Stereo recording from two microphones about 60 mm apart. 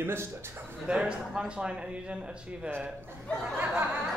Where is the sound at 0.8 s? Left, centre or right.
Centre.